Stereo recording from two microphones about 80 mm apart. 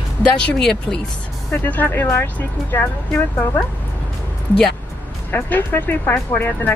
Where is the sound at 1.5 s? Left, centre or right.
Left.